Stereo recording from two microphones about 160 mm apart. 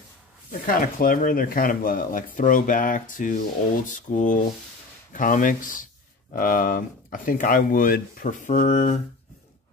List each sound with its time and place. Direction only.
0.5 s speech: 60° left (ahead or behind)
3.9 s a sound: 55° left (ahead or behind)
5.1 s speech: 55° left (ahead or behind)